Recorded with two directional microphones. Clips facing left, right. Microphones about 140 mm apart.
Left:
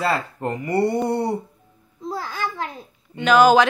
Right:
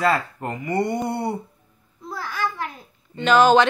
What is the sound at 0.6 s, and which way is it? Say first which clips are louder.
Speech: left 3 dB; 35° left (ahead or behind).